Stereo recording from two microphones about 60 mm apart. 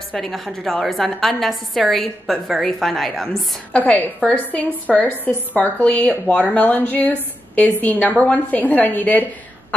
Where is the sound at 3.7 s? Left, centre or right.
Left.